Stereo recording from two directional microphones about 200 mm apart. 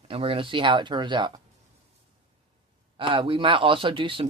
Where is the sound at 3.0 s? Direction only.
25° right (ahead or behind).